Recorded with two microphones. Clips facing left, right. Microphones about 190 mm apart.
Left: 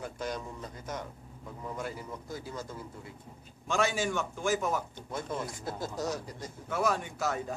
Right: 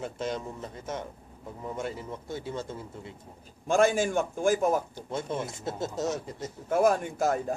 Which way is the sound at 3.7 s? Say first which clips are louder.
Right 6 dB; 50° right (ahead or behind).